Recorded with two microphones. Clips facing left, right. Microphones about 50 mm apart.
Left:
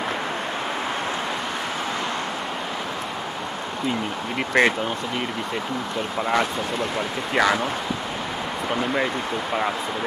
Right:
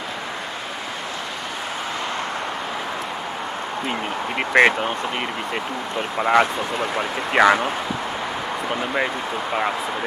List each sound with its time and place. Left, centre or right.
4.6 s speech: right
6.1 s speech: right